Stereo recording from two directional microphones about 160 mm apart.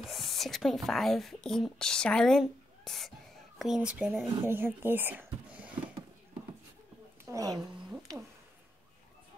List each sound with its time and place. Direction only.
0.0 s speech: centre (ahead or behind)
4.4 s speech: 15° right (ahead or behind)
7.2 s a woman's voice: 20° right (ahead or behind)